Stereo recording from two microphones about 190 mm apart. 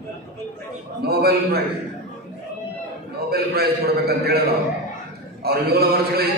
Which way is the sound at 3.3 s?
55° right (ahead or behind).